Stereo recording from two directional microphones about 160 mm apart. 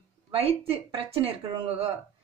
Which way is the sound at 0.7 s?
35° right (ahead or behind).